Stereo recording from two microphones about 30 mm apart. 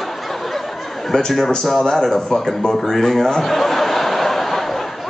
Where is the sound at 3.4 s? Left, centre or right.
Centre.